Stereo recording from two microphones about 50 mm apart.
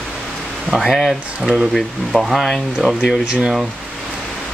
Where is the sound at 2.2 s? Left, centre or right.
Centre.